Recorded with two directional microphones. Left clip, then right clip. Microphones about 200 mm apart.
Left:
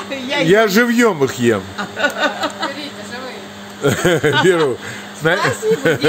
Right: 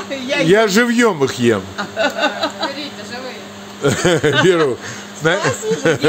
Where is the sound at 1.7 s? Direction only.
60° left (ahead or behind).